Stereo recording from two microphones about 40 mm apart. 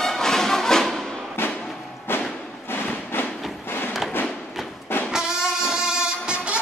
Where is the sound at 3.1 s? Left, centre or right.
Left.